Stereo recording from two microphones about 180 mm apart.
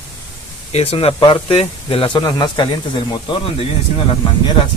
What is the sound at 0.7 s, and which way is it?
Speech, 35° left (ahead or behind).